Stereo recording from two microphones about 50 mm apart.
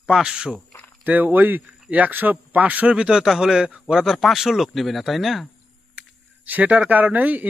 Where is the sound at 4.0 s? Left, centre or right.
Centre.